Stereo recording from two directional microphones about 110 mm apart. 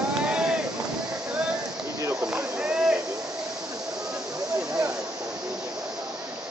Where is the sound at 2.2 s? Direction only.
5° right (ahead or behind).